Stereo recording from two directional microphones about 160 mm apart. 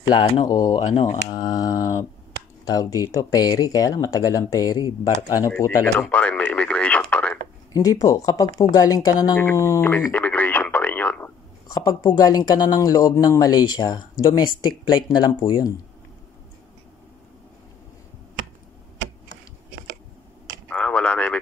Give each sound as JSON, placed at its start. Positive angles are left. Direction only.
{"t": 0.1, "sound": "speech", "side_deg": 30}
{"t": 0.9, "sound": "speech", "side_deg": 40}
{"t": 1.4, "sound": "a sound", "side_deg": 25}
{"t": 2.6, "sound": "speech", "side_deg": 20}
{"t": 5.6, "sound": "radio", "side_deg": 10}
{"t": 7.7, "sound": "speech", "side_deg": 20}
{"t": 8.7, "sound": "radio", "side_deg": 20}
{"t": 11.7, "sound": "speech", "side_deg": 20}
{"t": 20.7, "sound": "a sound", "side_deg": 5}